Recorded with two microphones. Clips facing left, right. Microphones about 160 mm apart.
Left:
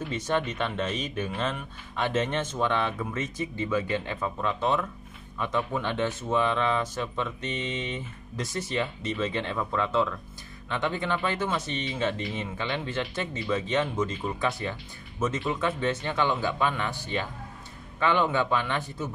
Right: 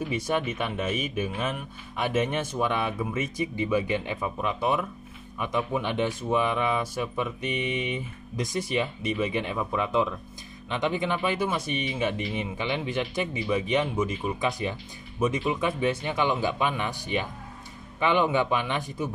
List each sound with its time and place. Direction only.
0.1 s speech: 10° right (ahead or behind)